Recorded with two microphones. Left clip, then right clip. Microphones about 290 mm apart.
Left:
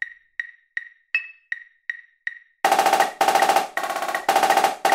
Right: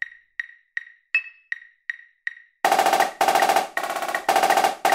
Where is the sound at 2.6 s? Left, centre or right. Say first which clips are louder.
Left 1 dB; centre.